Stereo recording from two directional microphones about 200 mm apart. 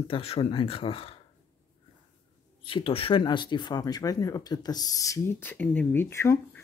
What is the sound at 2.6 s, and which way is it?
Speech, 25° left (ahead or behind).